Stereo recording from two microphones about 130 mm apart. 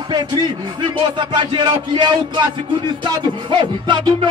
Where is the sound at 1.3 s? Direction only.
35° right (ahead or behind).